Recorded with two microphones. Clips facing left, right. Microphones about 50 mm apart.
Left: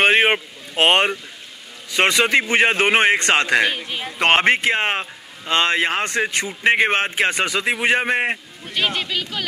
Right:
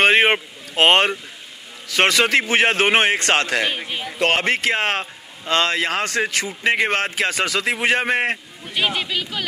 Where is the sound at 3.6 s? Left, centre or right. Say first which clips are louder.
Left 2 dB; centre.